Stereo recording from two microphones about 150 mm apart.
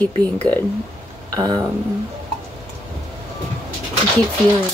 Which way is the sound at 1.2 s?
25° right (ahead or behind).